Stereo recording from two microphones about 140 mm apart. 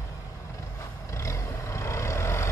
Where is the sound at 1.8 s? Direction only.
20° left (ahead or behind).